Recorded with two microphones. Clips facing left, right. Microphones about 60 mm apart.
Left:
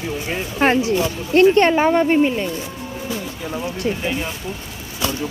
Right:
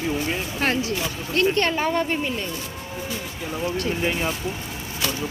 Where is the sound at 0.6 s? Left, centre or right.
Left.